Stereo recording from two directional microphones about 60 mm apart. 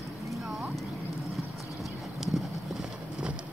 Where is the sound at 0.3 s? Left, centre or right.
Centre.